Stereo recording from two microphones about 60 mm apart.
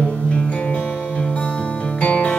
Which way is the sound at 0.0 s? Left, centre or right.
Centre.